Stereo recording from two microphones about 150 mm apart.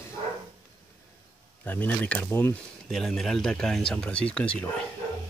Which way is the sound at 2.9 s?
Centre (ahead or behind).